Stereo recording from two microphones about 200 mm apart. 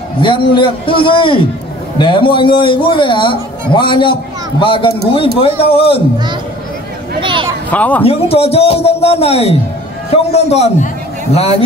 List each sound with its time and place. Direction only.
0.2 s a man's voice: 25° left (ahead or behind)
7.2 s speech: 25° right (ahead or behind)
7.7 s speech: 5° left (ahead or behind)
8.0 s a man's voice: 30° left (ahead or behind)